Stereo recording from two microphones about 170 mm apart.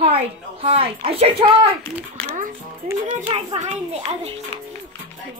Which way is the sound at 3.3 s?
35° right (ahead or behind).